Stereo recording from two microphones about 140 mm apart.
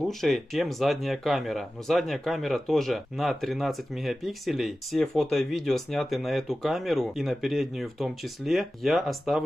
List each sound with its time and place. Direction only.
0.0 s speech: centre (ahead or behind)